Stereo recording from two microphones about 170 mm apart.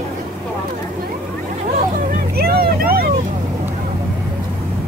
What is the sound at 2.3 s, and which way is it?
Vehicle, 60° right (ahead or behind).